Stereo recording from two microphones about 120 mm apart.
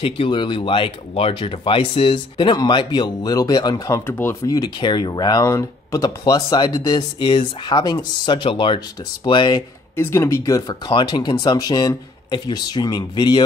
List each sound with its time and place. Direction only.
0.0 s speech: 45° left (ahead or behind); by 4.6 s 20° left (ahead or behind)
4.6 s speech: 40° left (ahead or behind)
9.9 s speech: 20° left (ahead or behind)
10.9 s speech: 40° left (ahead or behind)